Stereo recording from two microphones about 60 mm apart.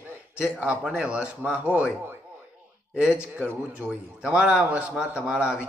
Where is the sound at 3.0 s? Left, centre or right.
Right.